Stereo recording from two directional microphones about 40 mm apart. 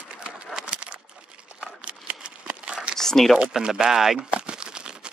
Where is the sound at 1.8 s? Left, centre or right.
Right.